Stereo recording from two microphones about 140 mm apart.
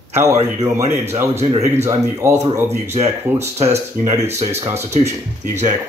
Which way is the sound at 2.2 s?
20° right (ahead or behind).